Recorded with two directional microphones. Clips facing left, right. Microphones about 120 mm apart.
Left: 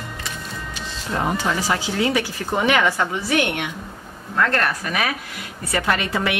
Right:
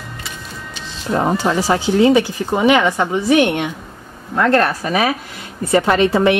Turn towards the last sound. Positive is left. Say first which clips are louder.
# right 9 dB
turn(degrees=-30)  # may be behind; listen again after turning